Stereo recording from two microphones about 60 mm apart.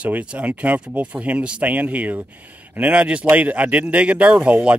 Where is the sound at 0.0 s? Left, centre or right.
Right.